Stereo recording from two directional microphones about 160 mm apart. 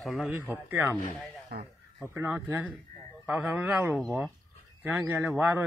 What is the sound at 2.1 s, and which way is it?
A man's voice, 15° right (ahead or behind).